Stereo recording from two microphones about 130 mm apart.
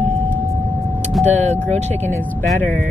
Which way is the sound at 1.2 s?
60° right (ahead or behind).